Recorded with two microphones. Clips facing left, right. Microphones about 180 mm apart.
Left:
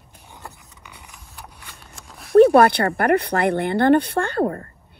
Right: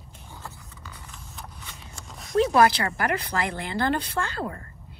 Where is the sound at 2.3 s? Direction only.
60° left (ahead or behind).